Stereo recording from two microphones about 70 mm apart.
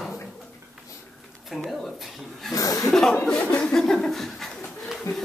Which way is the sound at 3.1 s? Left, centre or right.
Centre.